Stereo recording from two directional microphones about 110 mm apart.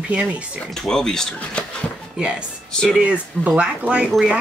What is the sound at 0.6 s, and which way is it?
Speech, 5° left (ahead or behind).